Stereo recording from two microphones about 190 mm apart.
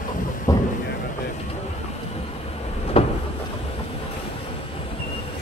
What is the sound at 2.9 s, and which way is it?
Vehicle, 30° left (ahead or behind).